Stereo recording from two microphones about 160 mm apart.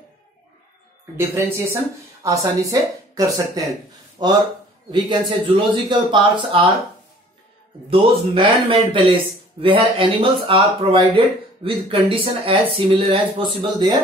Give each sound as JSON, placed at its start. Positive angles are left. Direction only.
{"t": 1.1, "sound": "speech", "side_deg": -15}
{"t": 5.6, "sound": "speech", "side_deg": -30}
{"t": 7.9, "sound": "speech", "side_deg": -35}